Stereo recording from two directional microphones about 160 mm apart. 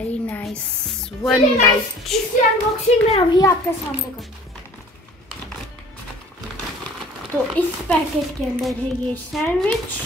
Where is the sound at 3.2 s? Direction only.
25° left (ahead or behind).